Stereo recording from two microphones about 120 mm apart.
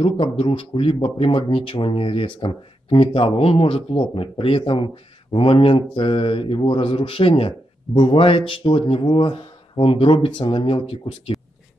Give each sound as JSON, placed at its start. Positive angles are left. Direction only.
{"t": 0.0, "sound": "speech", "side_deg": 50}